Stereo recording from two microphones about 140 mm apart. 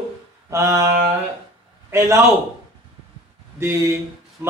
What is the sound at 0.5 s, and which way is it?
Mantra, 20° right (ahead or behind).